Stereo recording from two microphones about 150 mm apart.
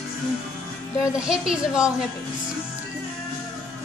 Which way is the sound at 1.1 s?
5° right (ahead or behind).